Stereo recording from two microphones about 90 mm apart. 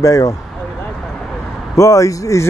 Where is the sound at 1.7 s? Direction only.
35° left (ahead or behind).